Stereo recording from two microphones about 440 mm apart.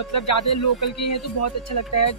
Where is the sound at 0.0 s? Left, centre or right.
Left.